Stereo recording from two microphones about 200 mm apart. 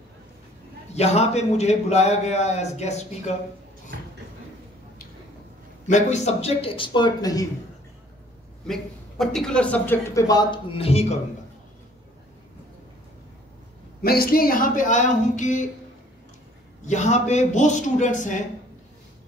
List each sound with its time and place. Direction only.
0.9 s a man's voice: 35° left (ahead or behind)
5.9 s speech: 35° left (ahead or behind); by 7.4 s 20° left (ahead or behind)
8.6 s a man's voice: centre (ahead or behind); by 11.1 s 30° left (ahead or behind)
14.0 s a man's voice: 50° left (ahead or behind)
16.8 s a man's voice: 35° left (ahead or behind)